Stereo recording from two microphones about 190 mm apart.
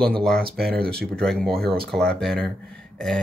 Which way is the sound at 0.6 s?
55° right (ahead or behind).